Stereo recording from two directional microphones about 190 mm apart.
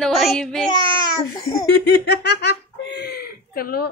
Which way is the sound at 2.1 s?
65° left (ahead or behind).